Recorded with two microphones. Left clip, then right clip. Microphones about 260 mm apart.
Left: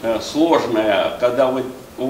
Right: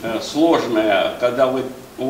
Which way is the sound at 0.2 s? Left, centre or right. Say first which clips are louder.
Right 3 dB; left.